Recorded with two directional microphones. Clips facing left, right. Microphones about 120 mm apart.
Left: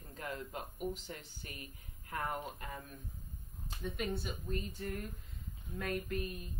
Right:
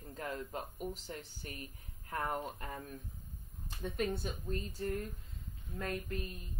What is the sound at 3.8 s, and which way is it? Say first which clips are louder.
Speech: right 2 dB; 40° right (ahead or behind).